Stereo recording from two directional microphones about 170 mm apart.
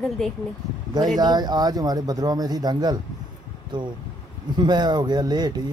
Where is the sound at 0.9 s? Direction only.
25° right (ahead or behind).